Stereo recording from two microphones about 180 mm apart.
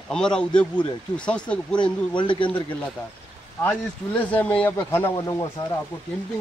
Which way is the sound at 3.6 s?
10° left (ahead or behind).